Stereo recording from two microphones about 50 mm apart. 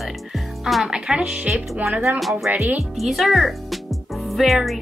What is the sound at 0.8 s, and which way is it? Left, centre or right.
Speech, centre.